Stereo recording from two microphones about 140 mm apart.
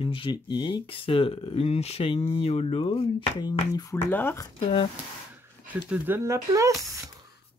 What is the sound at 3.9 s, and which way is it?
Speech, 15° left (ahead or behind).